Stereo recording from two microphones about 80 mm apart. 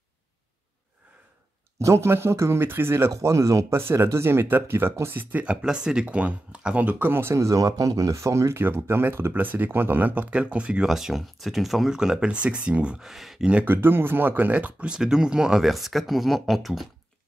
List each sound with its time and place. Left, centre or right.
1.8 s speech: right; by 13.1 s centre
13.1 s speech: centre
13.5 s speech: right
15.0 s speech: centre